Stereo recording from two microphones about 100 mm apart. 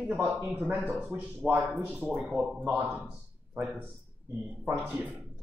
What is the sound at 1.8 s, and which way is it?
Speech, 10° right (ahead or behind).